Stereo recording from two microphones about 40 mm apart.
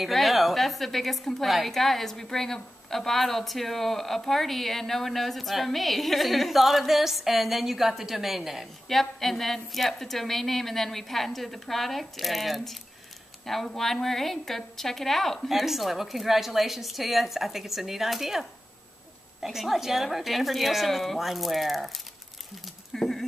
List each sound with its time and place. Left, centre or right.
0.0 s a woman's voice: centre
8.8 s a woman's voice: centre
22.9 s a woman's voice: centre